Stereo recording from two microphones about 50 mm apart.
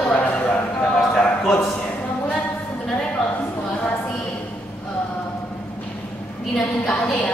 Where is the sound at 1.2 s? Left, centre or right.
Centre.